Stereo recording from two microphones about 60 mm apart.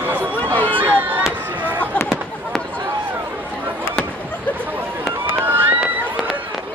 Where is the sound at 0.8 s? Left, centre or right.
Right.